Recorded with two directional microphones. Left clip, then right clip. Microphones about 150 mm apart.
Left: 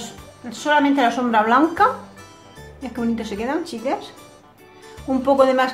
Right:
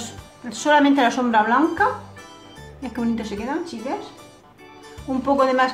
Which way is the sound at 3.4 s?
20° left (ahead or behind).